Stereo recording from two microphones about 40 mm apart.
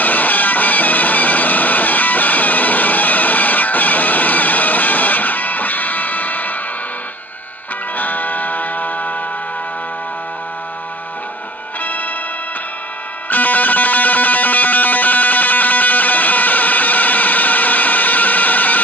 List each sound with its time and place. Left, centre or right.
0.0 s music: left
7.9 s music: left
11.8 s music: left
13.3 s music: left